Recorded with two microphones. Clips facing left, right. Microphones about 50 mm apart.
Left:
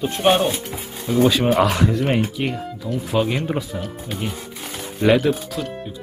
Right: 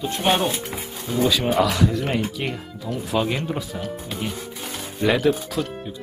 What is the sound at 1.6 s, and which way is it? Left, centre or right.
Speech, left.